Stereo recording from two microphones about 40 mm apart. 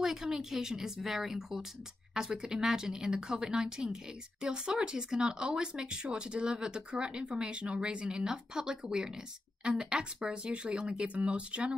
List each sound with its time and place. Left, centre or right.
0.0 s a woman's voice: centre; by 11.7 s right